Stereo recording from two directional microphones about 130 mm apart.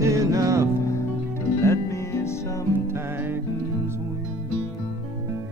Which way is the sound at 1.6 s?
20° left (ahead or behind).